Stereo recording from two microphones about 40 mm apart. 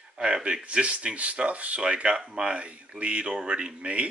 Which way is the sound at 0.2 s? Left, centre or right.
Right.